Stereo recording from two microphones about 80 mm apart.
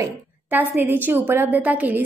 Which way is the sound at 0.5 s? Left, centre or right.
Right.